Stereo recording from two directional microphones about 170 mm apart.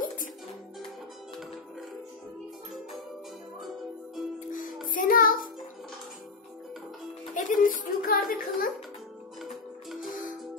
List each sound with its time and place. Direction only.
3.6 s music: centre (ahead or behind)
4.5 s music: 50° left (ahead or behind)
7.3 s a sound: 50° left (ahead or behind)
9.4 s music: centre (ahead or behind)